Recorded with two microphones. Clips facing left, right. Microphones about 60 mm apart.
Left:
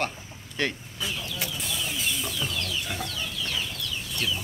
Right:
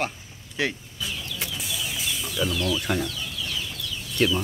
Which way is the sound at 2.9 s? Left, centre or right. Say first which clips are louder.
Right 8 dB; right.